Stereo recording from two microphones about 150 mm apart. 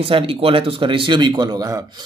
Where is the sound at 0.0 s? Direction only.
40° right (ahead or behind).